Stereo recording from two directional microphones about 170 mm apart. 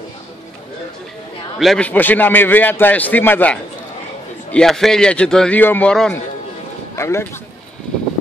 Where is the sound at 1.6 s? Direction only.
5° left (ahead or behind).